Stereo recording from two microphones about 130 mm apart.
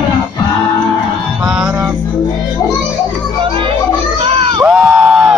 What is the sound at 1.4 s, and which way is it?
Music, 10° right (ahead or behind).